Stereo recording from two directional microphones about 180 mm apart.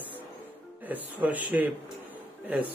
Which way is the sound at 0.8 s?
10° right (ahead or behind).